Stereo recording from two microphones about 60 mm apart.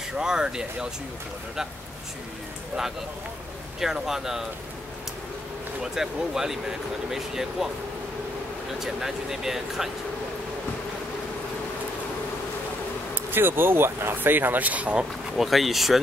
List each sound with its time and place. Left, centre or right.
0.2 s speech: centre
3.8 s speech: centre
5.8 s speech: centre
8.7 s speech: centre
13.1 s speech: right
15.3 s speech: centre